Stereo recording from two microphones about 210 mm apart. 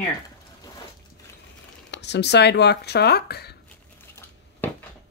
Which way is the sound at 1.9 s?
55° left (ahead or behind).